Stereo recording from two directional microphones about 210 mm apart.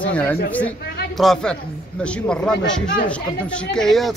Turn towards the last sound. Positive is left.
turn(degrees=0)  # may be behind; listen again after turning